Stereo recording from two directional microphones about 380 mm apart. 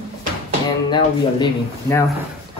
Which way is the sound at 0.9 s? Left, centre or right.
Centre.